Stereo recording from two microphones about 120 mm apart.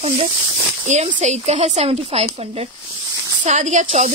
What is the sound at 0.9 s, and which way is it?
Speech, 80° right.